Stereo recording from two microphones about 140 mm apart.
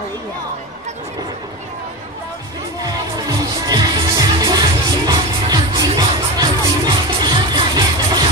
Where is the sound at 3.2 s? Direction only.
30° right (ahead or behind).